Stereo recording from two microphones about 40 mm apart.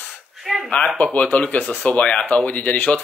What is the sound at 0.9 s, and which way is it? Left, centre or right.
Speech, left.